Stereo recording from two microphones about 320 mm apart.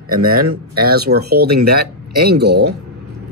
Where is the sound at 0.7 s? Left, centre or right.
Right.